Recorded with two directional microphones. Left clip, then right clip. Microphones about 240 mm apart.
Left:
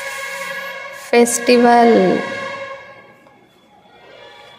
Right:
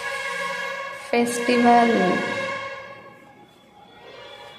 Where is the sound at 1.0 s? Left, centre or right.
Left.